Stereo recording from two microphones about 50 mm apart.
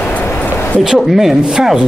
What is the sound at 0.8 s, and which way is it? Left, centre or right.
Speech, centre.